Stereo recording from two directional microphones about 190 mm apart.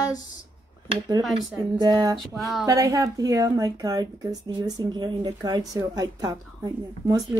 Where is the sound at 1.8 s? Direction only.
20° right (ahead or behind).